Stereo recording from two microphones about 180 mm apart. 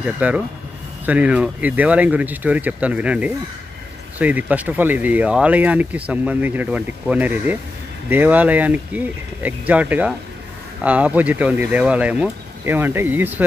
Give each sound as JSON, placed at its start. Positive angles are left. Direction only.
{"t": 0.0, "sound": "speech", "side_deg": -10}